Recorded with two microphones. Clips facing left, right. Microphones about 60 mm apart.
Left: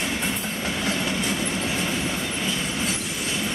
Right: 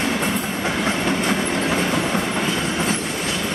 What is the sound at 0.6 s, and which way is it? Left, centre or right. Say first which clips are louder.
Train: right 4 dB; right.